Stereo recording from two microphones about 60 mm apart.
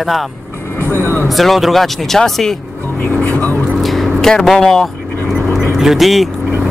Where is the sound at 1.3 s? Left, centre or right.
Centre.